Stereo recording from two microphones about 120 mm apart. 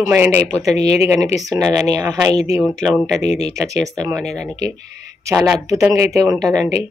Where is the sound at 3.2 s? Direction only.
60° left (ahead or behind).